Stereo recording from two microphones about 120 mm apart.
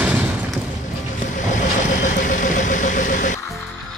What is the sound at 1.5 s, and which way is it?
Vehicle, 90° left.